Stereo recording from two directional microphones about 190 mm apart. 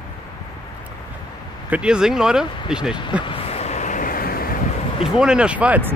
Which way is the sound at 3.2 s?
30° left (ahead or behind).